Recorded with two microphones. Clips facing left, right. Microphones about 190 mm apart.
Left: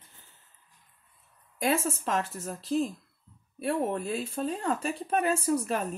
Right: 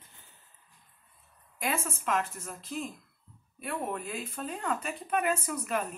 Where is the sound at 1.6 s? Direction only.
35° left (ahead or behind).